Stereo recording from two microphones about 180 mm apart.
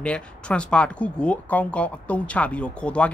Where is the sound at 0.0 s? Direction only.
5° left (ahead or behind).